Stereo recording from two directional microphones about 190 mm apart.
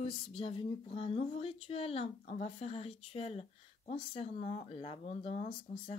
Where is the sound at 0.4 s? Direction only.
30° left (ahead or behind).